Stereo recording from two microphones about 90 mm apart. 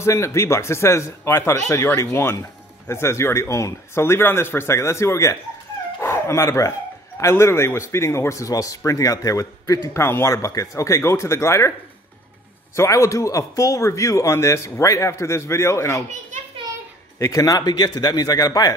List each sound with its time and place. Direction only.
0.0 s a man's voice: 35° left (ahead or behind)
5.9 s dog: 30° left (ahead or behind)
7.2 s a man's voice: 30° left (ahead or behind)
12.7 s a man's voice: 35° left (ahead or behind)
17.2 s a man's voice: 40° left (ahead or behind)